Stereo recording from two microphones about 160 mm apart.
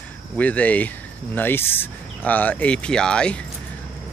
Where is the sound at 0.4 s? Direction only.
10° left (ahead or behind).